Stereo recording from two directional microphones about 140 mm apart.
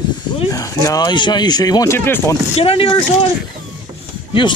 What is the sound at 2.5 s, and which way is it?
Speech, 45° left (ahead or behind).